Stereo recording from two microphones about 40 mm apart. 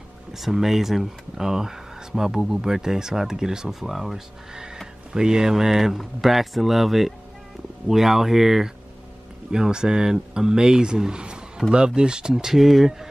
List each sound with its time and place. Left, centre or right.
0.3 s speech: centre
5.1 s speech: centre
12.5 s speech: centre